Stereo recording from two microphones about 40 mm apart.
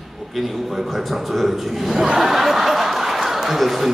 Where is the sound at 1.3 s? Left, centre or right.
Centre.